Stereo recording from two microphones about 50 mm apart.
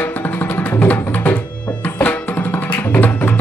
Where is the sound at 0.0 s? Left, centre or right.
Left.